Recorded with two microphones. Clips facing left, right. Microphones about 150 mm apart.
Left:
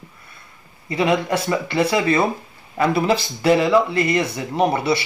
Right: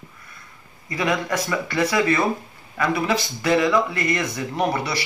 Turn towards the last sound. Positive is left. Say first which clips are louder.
# left 5 dB
turn(degrees=25)  # may be behind; listen again after turning